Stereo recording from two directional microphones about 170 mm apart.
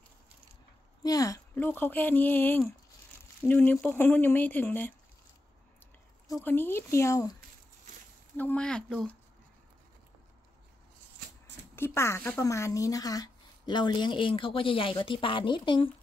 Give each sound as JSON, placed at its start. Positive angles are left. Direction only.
{"t": 1.0, "sound": "speech", "side_deg": 20}
{"t": 6.4, "sound": "speech", "side_deg": 10}
{"t": 8.4, "sound": "speech", "side_deg": 10}
{"t": 11.7, "sound": "speech", "side_deg": 15}